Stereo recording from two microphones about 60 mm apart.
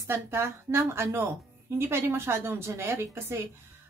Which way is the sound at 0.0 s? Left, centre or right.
Right.